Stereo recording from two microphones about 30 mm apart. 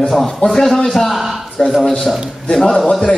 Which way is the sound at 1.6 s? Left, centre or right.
Left.